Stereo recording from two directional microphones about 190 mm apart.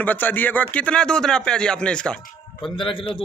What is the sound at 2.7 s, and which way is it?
Speech, 25° left (ahead or behind).